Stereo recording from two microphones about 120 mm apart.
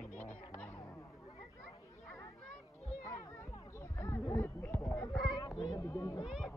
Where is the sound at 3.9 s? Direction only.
20° left (ahead or behind).